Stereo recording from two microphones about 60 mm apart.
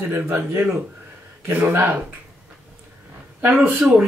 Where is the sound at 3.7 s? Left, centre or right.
Centre.